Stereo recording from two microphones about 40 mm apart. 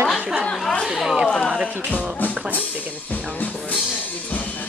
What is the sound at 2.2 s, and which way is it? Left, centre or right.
Music, left.